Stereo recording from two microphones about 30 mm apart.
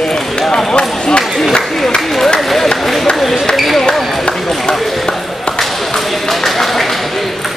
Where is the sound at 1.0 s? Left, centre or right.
Left.